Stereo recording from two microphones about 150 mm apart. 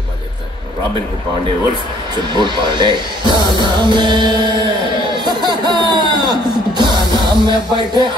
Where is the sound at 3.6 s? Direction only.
30° right (ahead or behind).